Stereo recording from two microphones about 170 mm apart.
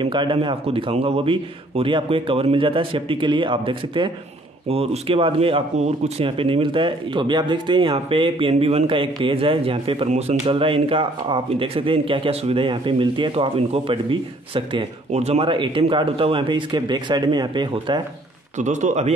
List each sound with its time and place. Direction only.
0.0 s a man's voice: 30° right (ahead or behind)
18.6 s speech: 45° right (ahead or behind)